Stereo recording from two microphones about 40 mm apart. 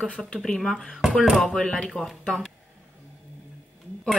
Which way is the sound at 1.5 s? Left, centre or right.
Centre.